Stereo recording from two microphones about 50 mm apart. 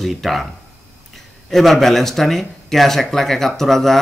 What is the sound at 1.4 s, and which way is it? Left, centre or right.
A man's voice, centre.